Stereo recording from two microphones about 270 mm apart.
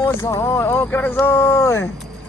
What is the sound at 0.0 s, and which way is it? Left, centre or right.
Speech, centre.